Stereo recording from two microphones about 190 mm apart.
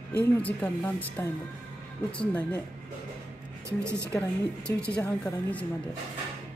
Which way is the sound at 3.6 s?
15° right (ahead or behind).